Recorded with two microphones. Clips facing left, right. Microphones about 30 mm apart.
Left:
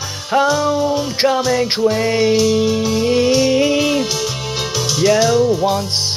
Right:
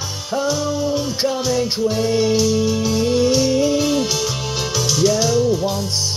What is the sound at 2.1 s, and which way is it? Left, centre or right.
Music, left.